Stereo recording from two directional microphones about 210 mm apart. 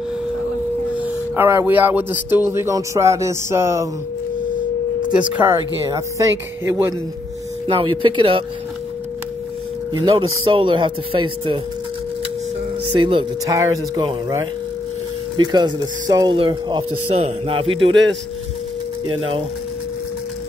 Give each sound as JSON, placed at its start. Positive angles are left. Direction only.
{"t": 0.9, "sound": "speech", "side_deg": -10}
{"t": 5.3, "sound": "speech", "side_deg": -10}
{"t": 7.6, "sound": "speech", "side_deg": -25}
{"t": 9.9, "sound": "speech", "side_deg": -20}
{"t": 12.9, "sound": "speech", "side_deg": -25}
{"t": 19.0, "sound": "speech", "side_deg": -25}